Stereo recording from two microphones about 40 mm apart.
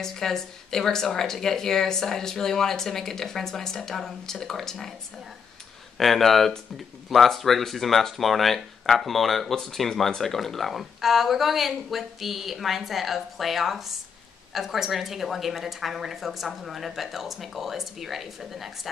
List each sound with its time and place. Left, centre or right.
0.0 s speech: centre
5.9 s a woman's voice: centre